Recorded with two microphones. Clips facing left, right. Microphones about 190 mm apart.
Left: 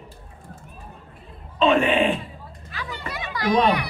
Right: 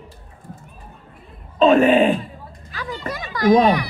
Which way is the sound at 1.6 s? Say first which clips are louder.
Right 6 dB; 40° right (ahead or behind).